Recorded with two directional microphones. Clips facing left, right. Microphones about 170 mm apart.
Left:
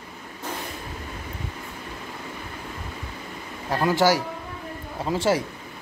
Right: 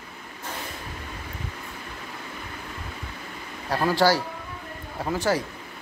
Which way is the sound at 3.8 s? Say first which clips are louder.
Left 1 dB; 20° left (ahead or behind).